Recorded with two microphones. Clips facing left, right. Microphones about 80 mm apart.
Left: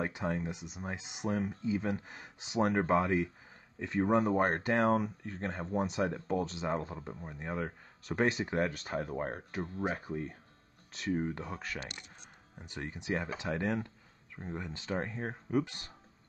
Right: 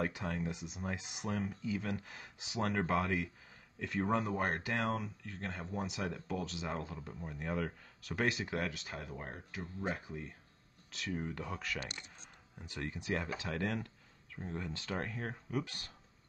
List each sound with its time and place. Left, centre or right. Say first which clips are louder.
0.0 s speech: left 3 dB; left
4.1 s speech: left 7 dB; left